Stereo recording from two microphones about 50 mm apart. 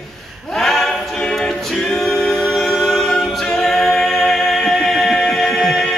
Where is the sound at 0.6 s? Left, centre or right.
Centre.